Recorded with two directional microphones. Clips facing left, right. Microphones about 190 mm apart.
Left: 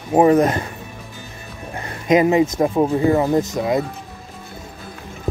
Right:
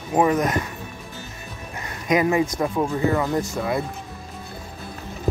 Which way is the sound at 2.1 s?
20° left (ahead or behind).